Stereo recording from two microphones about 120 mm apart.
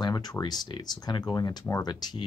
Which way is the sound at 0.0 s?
35° left (ahead or behind).